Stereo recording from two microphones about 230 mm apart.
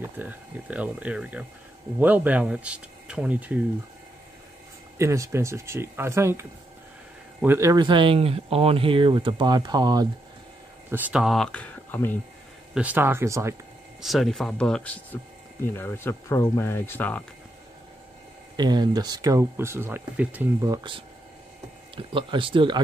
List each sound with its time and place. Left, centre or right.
0.0 s speech: centre
4.9 s speech: centre
7.4 s speech: centre
12.7 s speech: centre
14.0 s speech: centre
18.6 s speech: centre